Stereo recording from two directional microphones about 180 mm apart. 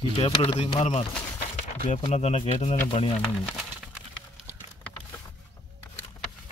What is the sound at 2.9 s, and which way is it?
Speech, 30° left (ahead or behind).